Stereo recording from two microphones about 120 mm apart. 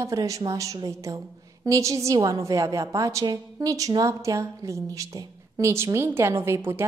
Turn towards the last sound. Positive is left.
turn(degrees=-20)  # may be behind; listen again after turning